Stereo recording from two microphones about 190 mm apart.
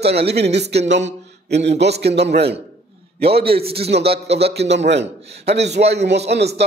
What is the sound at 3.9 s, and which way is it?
A man's voice, 60° right (ahead or behind).